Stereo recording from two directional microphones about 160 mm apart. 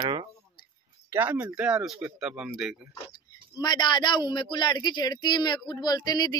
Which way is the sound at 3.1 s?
25° left (ahead or behind).